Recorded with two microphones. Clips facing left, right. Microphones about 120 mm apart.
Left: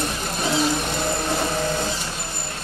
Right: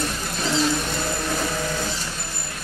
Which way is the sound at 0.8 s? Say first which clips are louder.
Left 2 dB; 25° left (ahead or behind).